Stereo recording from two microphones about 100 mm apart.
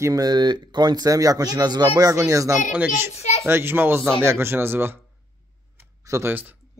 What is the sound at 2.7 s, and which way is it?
A child's voice, 15° right (ahead or behind).